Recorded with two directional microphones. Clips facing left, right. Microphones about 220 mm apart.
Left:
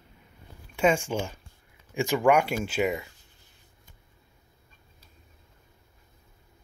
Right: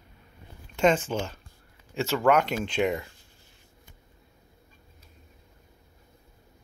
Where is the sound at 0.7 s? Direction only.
10° left (ahead or behind).